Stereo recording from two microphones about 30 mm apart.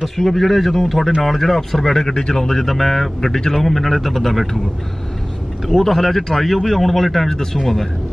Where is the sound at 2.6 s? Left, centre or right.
Centre.